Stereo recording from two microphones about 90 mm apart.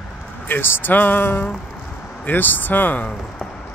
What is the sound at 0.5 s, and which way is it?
Speech, 25° left (ahead or behind).